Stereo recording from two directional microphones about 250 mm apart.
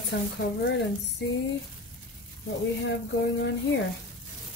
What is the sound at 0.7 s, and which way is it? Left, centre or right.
Speech, left.